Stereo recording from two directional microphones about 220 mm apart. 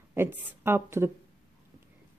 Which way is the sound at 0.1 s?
10° right (ahead or behind).